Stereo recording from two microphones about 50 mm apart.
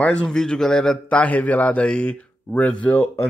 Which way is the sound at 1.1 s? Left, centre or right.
Left.